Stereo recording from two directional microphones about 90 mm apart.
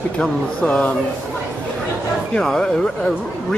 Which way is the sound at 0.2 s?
10° left (ahead or behind).